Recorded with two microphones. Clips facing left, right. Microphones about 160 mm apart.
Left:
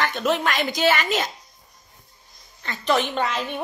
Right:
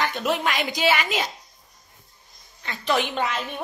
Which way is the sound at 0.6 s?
45° left (ahead or behind).